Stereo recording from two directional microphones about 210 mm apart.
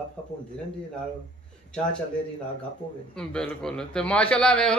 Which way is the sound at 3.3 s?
5° left (ahead or behind).